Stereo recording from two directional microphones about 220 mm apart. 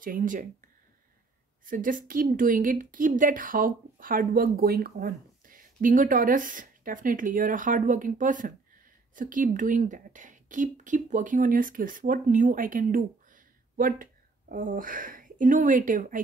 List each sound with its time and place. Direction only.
0.0 s a woman's voice: 40° right (ahead or behind)
1.7 s a woman's voice: 40° right (ahead or behind)